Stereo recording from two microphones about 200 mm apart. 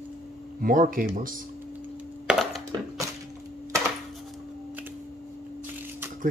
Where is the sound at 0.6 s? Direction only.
45° right (ahead or behind).